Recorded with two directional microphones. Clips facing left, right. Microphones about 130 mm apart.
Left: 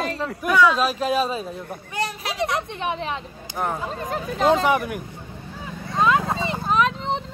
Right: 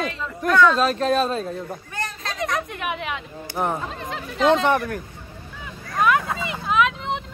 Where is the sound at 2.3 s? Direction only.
30° left (ahead or behind).